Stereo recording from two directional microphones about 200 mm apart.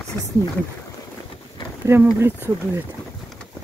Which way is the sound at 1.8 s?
10° right (ahead or behind).